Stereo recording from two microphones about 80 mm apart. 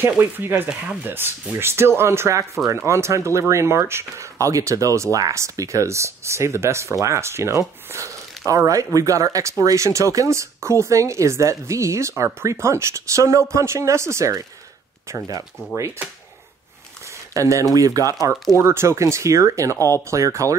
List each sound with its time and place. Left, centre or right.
0.0 s speech: right
17.3 s speech: right
18.6 s speech: right